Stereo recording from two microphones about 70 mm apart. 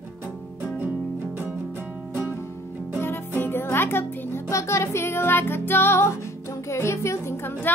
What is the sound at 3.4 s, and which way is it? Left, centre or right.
Music, left.